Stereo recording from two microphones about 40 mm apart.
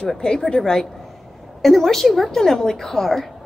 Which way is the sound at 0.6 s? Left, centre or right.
Centre.